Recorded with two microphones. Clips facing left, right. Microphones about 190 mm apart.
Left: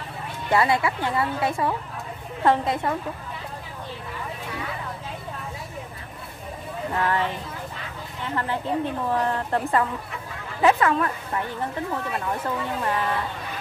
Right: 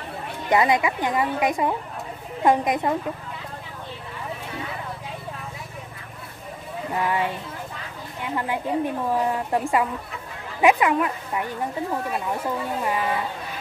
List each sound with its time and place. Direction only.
0.5 s speech: 15° right (ahead or behind)
6.9 s speech: 10° right (ahead or behind)